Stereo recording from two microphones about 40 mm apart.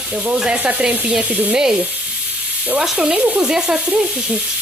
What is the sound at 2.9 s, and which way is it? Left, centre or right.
Sizzle, centre.